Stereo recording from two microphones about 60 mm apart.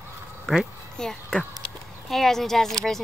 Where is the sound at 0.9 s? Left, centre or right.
Centre.